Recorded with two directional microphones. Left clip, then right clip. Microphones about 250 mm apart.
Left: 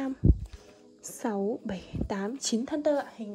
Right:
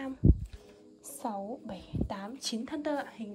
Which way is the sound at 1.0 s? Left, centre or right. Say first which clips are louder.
Left 6 dB; left.